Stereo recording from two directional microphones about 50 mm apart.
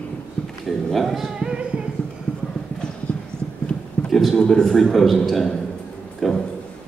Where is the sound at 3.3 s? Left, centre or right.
Centre.